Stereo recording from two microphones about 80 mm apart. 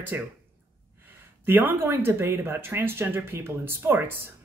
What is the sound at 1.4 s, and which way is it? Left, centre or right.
Speech, right.